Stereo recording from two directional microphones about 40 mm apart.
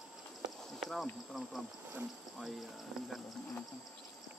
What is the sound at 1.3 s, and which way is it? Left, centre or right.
Speech, centre.